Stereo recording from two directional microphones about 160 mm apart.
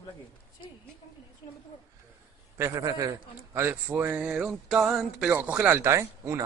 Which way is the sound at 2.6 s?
20° right (ahead or behind).